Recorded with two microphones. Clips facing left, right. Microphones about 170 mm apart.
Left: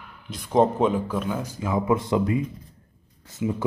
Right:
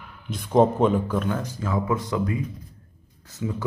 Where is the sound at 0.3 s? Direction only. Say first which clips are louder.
Right 1 dB; centre (ahead or behind).